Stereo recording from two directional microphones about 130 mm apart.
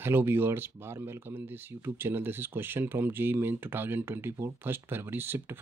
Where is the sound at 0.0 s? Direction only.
15° right (ahead or behind).